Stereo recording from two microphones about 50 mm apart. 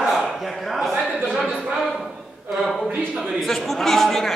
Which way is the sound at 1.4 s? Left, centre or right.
Centre.